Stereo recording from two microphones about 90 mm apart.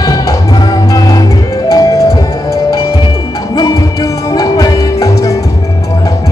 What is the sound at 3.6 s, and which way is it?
Music, 45° left (ahead or behind).